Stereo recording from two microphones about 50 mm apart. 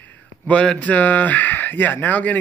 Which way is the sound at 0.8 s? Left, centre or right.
Left.